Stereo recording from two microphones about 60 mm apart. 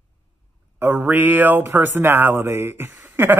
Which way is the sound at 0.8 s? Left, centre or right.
Right.